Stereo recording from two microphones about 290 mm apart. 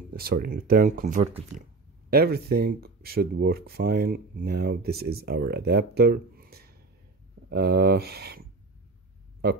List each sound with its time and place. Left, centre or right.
0.1 s speech: right